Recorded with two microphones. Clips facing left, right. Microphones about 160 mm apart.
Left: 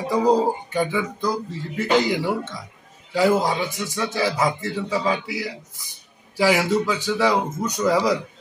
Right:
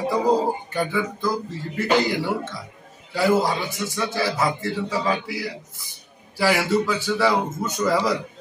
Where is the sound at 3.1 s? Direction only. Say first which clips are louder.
Left 1 dB; 15° left (ahead or behind).